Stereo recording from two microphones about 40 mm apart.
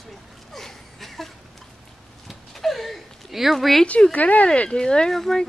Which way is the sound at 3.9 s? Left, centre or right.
Left.